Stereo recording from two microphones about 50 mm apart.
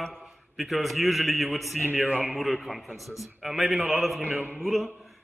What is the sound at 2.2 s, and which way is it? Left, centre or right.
A man's voice, centre.